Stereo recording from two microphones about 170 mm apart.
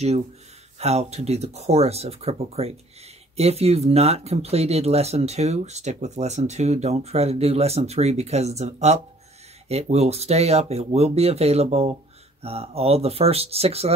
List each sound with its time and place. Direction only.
0.7 s speech: 40° right (ahead or behind)